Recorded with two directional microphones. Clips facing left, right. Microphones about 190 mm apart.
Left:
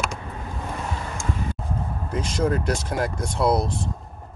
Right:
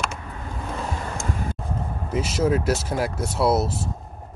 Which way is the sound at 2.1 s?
5° right (ahead or behind).